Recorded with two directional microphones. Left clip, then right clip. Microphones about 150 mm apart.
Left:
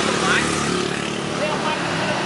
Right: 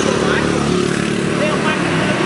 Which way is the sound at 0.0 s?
25° left (ahead or behind).